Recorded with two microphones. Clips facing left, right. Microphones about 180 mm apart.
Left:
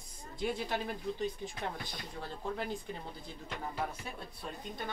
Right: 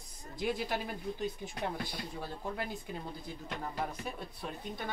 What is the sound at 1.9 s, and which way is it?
Speech, 10° right (ahead or behind).